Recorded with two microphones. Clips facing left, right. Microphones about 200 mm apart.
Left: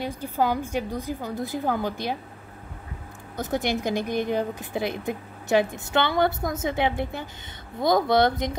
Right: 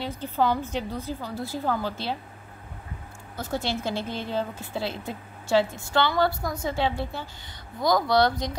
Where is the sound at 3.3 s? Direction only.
20° left (ahead or behind).